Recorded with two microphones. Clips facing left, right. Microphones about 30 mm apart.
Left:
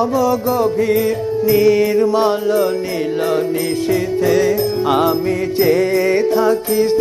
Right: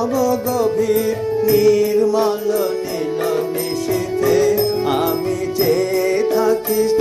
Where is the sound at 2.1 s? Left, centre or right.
Left.